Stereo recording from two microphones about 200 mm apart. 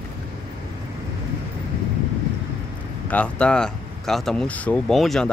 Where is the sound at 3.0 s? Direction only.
5° left (ahead or behind).